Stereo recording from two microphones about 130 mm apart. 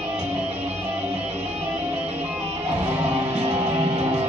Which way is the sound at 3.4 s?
50° right (ahead or behind).